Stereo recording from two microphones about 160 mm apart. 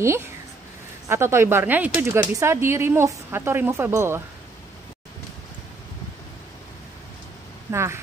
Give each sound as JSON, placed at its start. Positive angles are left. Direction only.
{"t": 0.0, "sound": "a woman's voice", "side_deg": -15}
{"t": 7.7, "sound": "a woman's voice", "side_deg": -15}